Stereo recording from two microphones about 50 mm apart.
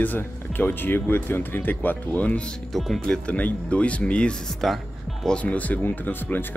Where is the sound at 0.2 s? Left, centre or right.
Left.